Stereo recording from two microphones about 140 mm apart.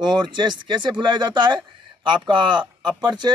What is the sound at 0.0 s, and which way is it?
Speech, 30° right (ahead or behind).